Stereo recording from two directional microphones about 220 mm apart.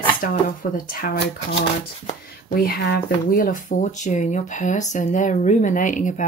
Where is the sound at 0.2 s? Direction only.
40° left (ahead or behind).